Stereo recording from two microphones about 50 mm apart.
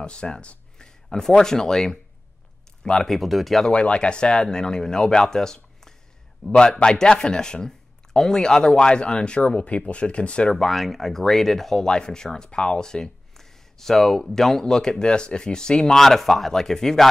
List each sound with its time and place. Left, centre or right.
0.0 s a sound: centre
1.4 s speech: centre
3.2 s speech: centre
3.7 s speech: left
10.5 s speech: centre